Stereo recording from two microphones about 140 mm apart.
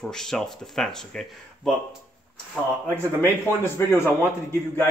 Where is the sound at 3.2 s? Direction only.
15° left (ahead or behind).